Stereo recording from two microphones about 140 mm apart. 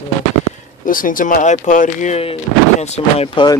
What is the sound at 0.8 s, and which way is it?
Speech, 75° left (ahead or behind).